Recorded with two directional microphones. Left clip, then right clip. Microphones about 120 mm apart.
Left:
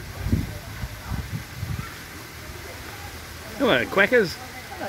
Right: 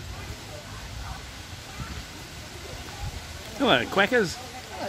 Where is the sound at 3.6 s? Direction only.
5° right (ahead or behind).